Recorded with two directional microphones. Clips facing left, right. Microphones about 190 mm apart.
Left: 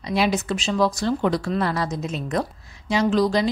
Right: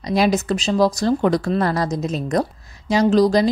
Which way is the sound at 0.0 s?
40° right (ahead or behind).